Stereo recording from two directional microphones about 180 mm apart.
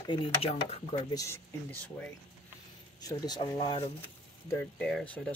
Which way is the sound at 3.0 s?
20° left (ahead or behind).